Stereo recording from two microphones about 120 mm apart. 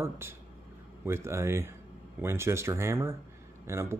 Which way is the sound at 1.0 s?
20° right (ahead or behind).